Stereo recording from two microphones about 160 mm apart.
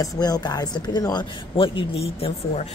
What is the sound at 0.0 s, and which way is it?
A man's voice, 25° left (ahead or behind).